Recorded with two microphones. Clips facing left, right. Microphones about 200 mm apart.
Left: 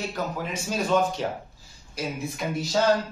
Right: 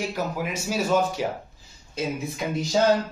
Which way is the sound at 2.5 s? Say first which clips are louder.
Right 2 dB; 15° right (ahead or behind).